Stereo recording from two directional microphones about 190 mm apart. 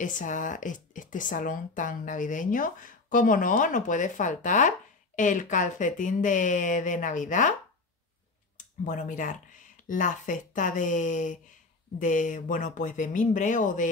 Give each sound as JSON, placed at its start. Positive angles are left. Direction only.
{"t": 0.0, "sound": "speech", "side_deg": 40}
{"t": 8.5, "sound": "speech", "side_deg": 45}